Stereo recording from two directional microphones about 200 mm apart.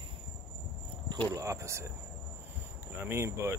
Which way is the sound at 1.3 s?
15° right (ahead or behind).